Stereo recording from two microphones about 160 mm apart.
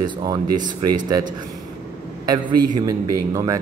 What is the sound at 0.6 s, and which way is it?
Speech, 25° right (ahead or behind).